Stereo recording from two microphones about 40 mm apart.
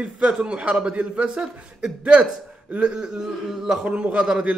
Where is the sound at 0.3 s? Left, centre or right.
Right.